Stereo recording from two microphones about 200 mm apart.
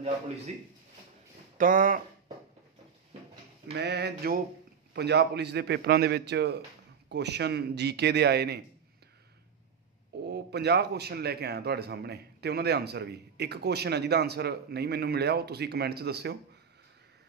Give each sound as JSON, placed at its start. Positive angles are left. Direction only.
{"t": 0.5, "sound": "speech", "side_deg": -35}
{"t": 3.7, "sound": "a man's voice", "side_deg": -55}
{"t": 10.2, "sound": "a man's voice", "side_deg": -55}